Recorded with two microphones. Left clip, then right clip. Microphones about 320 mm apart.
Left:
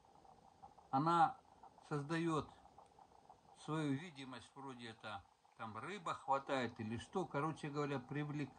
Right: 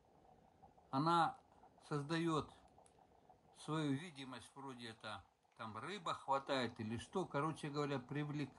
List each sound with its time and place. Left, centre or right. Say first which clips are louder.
1.9 s speech: even; centre
3.6 s speech: even; centre